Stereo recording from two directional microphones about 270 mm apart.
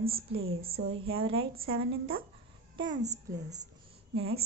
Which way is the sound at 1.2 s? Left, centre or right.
Centre.